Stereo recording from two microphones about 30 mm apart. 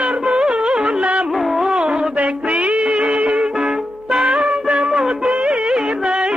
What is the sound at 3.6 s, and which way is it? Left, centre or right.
Music, centre.